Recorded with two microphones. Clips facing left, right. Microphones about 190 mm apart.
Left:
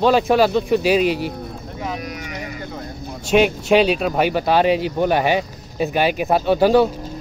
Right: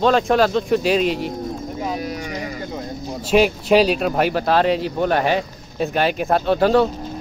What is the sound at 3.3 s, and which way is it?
Speech, centre (ahead or behind).